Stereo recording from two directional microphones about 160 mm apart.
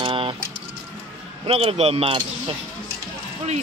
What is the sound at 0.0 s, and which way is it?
Music, 35° right (ahead or behind).